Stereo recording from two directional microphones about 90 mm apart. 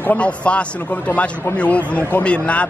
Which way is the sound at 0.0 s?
15° left (ahead or behind).